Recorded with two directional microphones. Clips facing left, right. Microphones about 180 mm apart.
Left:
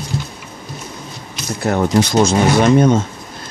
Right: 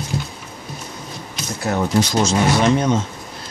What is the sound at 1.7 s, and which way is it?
Speech, 55° left (ahead or behind).